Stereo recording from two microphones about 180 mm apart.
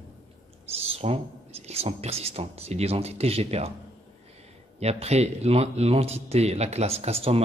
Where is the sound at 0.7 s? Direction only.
35° right (ahead or behind).